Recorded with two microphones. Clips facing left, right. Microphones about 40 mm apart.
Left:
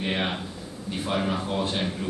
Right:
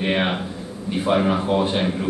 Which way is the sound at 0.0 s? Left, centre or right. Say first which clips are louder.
Right 6 dB; right.